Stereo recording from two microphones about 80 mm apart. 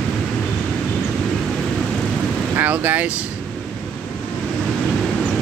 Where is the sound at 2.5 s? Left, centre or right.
Right.